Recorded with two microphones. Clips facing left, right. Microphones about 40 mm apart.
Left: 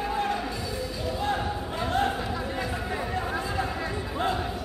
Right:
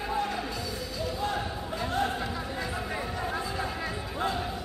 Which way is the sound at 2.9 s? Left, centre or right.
Centre.